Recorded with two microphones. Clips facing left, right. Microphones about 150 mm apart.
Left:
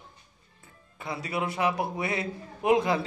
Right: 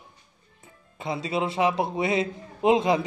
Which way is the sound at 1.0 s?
20° right (ahead or behind).